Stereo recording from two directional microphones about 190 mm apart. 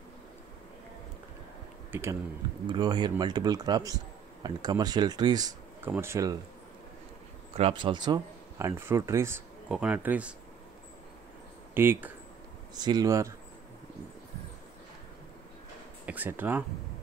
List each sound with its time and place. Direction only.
1.9 s speech: 15° right (ahead or behind)
2.6 s a man's voice: 25° right (ahead or behind)
7.5 s speech: 30° right (ahead or behind); by 10.3 s 10° right (ahead or behind)
11.7 s a man's voice: 10° right (ahead or behind)
16.1 s speech: 10° right (ahead or behind)